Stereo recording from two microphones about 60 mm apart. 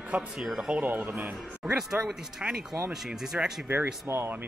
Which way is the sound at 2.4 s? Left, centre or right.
Right.